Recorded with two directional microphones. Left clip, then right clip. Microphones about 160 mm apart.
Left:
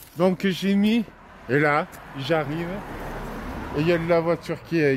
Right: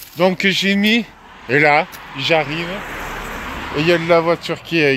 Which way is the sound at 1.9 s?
75° left (ahead or behind).